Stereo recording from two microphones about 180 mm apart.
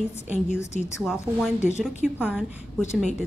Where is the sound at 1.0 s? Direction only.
5° right (ahead or behind).